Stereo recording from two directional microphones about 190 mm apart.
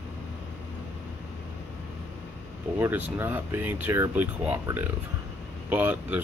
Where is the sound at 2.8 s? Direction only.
10° right (ahead or behind).